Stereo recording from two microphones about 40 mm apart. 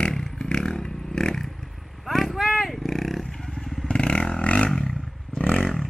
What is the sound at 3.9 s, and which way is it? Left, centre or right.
Vehicle, left.